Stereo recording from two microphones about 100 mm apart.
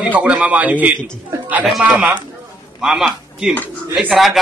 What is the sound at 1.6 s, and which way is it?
A man's voice, centre (ahead or behind).